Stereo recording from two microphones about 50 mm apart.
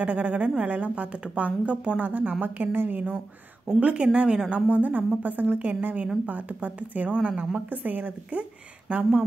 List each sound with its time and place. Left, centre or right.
0.0 s a woman's voice: right
2.7 s speech: right
3.8 s a woman's voice: centre